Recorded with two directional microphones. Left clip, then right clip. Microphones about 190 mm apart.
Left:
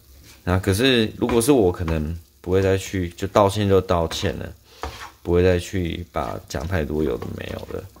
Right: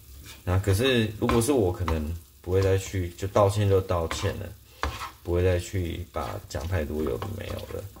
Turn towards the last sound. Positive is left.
turn(degrees=55)  # may be behind; listen again after turning